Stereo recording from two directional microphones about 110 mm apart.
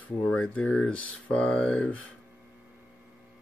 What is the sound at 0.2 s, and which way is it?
Speech, 10° left (ahead or behind).